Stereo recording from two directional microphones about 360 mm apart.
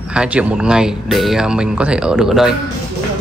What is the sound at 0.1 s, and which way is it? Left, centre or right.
A man's voice, centre.